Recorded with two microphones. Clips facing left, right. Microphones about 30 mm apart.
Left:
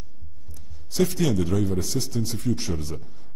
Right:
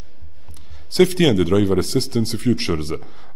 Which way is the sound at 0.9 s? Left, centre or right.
Right.